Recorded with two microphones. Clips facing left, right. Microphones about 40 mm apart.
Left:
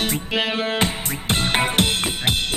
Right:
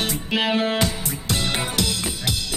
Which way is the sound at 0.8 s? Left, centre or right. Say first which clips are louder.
Left 1 dB; left.